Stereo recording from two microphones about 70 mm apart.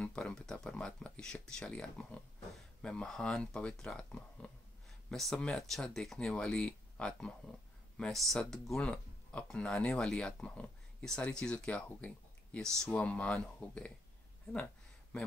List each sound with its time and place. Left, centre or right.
0.0 s speech: centre
8.1 s speech: centre
15.1 s speech: centre